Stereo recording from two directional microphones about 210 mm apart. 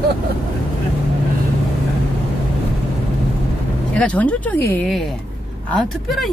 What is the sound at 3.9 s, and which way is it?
Speech, 5° left (ahead or behind).